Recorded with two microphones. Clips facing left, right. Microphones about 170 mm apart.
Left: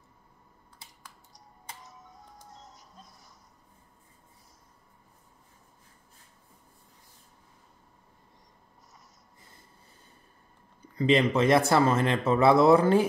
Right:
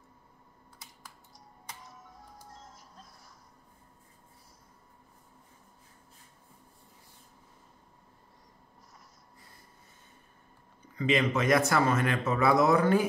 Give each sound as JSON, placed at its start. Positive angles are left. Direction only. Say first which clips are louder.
{"t": 2.3, "sound": "music", "louder": "even", "side_deg": 0}
{"t": 11.0, "sound": "speech", "louder": "left 4 dB", "side_deg": 30}